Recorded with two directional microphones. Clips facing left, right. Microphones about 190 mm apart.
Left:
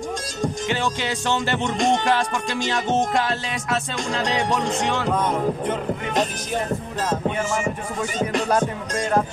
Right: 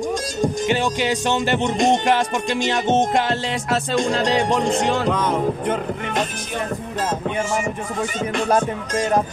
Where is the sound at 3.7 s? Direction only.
35° right (ahead or behind).